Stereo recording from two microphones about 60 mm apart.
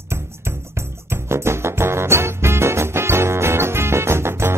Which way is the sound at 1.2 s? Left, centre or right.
Right.